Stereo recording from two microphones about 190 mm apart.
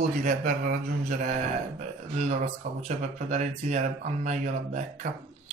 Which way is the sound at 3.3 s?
40° right (ahead or behind).